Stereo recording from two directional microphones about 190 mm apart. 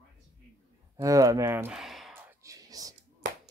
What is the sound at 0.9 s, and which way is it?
Speech, 15° right (ahead or behind).